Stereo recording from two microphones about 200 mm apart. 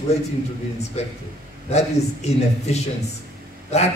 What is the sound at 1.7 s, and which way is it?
A man's voice, 35° left (ahead or behind).